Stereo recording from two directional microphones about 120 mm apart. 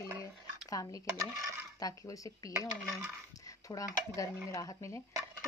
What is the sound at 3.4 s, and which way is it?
Cutlery, 30° left (ahead or behind).